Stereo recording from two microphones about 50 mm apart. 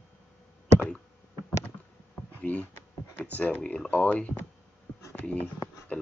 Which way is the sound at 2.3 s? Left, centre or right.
Left.